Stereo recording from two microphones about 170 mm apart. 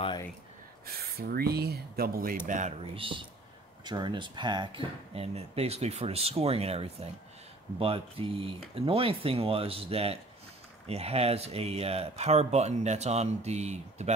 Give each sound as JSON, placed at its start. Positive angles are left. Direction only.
{"t": 0.8, "sound": "speech", "side_deg": -65}
{"t": 2.4, "sound": "speech", "side_deg": -45}
{"t": 2.8, "sound": "speech", "side_deg": -30}